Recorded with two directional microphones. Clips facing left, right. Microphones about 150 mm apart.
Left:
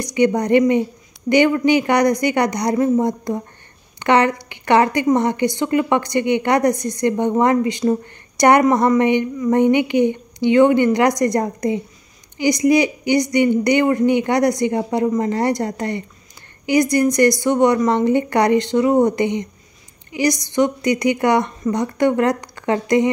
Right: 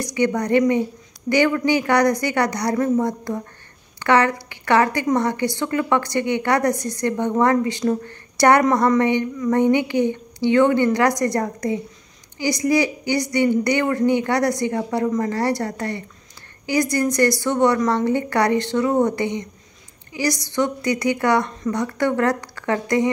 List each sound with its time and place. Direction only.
0.0 s a woman's voice: 20° left (ahead or behind)